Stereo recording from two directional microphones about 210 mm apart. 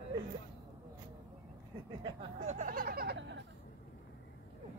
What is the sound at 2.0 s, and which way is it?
Speech, 30° right (ahead or behind).